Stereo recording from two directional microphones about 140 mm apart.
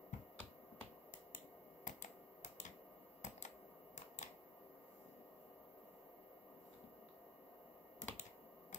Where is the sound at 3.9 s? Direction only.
60° left (ahead or behind).